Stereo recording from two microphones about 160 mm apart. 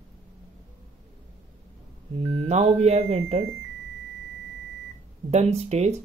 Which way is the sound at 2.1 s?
40° right (ahead or behind).